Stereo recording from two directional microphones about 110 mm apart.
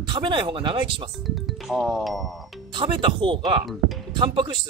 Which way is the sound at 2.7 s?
50° right (ahead or behind).